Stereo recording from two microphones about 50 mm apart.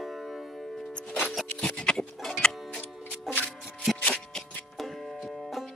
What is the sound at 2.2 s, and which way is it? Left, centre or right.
Music, centre.